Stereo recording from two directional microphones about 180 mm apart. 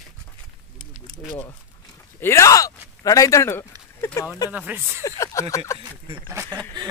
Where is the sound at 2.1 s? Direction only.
15° left (ahead or behind).